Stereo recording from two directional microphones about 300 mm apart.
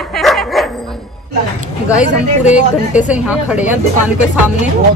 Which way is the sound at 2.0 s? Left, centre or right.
Left.